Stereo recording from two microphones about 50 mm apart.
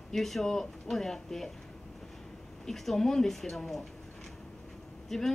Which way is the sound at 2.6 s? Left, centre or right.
Centre.